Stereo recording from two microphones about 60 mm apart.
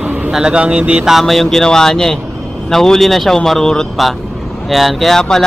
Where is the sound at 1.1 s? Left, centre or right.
Centre.